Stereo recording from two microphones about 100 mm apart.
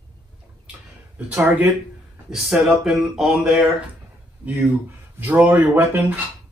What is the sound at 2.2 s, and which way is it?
Speech, 5° right (ahead or behind).